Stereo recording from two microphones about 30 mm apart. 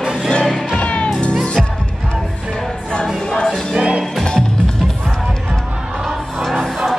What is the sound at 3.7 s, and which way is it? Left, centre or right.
Music, right.